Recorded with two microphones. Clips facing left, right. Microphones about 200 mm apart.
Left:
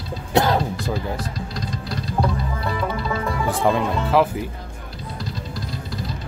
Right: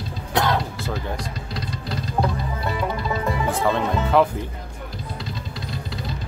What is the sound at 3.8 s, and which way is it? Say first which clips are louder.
Speech: even; centre (ahead or behind).